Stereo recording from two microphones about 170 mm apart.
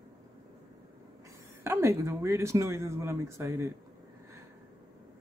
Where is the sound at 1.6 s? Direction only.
15° right (ahead or behind).